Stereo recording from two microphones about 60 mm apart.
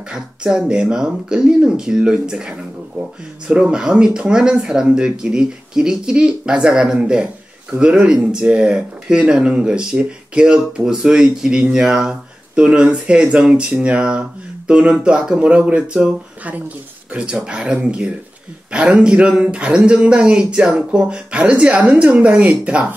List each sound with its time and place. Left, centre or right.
0.1 s speech: centre